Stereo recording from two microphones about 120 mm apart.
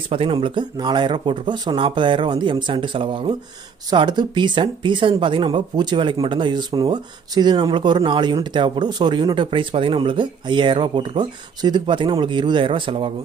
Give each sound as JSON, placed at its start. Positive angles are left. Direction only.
{"t": 0.1, "sound": "speech", "side_deg": -50}